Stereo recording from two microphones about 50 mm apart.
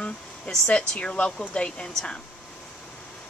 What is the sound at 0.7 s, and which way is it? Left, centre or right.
Speech, left.